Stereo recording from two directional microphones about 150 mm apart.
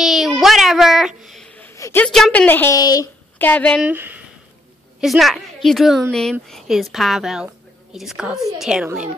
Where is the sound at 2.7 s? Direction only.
25° left (ahead or behind).